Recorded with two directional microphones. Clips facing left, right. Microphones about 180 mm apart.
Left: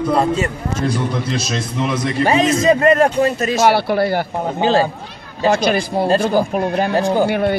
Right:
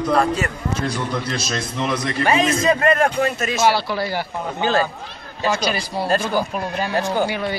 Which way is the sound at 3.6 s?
55° left (ahead or behind).